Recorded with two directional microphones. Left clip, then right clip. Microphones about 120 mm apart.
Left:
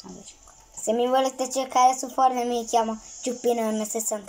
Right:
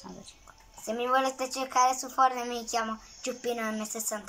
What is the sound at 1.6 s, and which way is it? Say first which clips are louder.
A woman's voice: left 6 dB; 90° left.